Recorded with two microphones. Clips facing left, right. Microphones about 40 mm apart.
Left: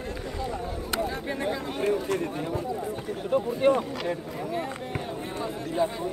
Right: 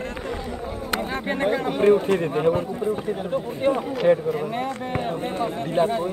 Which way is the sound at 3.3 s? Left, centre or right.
Centre.